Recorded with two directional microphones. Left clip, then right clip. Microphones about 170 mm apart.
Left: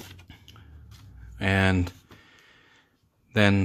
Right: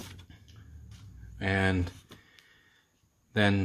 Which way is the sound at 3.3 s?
35° left (ahead or behind).